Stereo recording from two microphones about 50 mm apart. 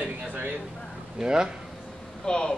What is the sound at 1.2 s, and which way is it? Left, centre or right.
Speech, centre.